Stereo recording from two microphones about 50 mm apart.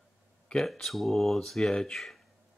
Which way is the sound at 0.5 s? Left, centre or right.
Centre.